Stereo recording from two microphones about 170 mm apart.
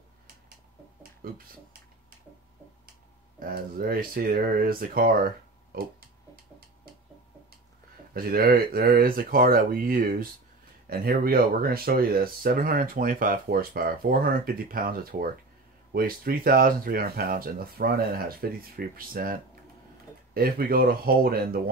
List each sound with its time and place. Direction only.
1.2 s a sound: 60° right (ahead or behind)
3.3 s speech: 60° right (ahead or behind)
8.1 s speech: 60° right (ahead or behind)
20.3 s speech: 60° right (ahead or behind)